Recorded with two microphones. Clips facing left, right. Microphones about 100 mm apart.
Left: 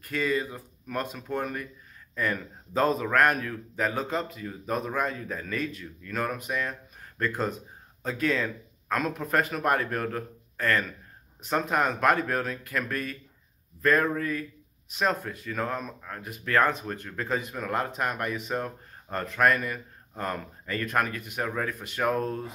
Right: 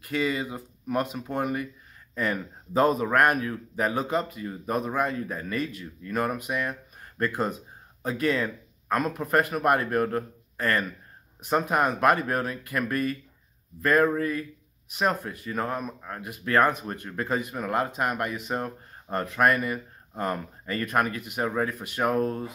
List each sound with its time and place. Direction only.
0.1 s speech: 15° right (ahead or behind)